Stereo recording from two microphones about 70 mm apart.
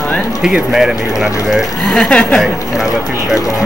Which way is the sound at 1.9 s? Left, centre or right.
Centre.